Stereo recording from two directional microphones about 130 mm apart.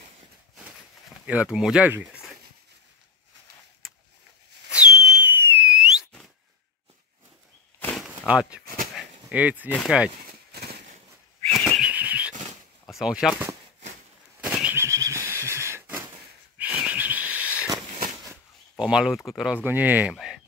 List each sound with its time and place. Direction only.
1.2 s speech: 10° right (ahead or behind)
4.6 s whistle: 5° right (ahead or behind)
5.7 s a sound: 5° right (ahead or behind)
8.3 s speech: 10° right (ahead or behind)
8.9 s a sound: 10° right (ahead or behind)
9.8 s speech: 10° right (ahead or behind)
11.5 s whistling: 10° left (ahead or behind)
11.8 s bird flight: 10° right (ahead or behind)
12.8 s speech: 5° right (ahead or behind)
14.4 s a sound: 10° right (ahead or behind)
16.5 s owl: 10° right (ahead or behind)
18.8 s speech: 5° right (ahead or behind)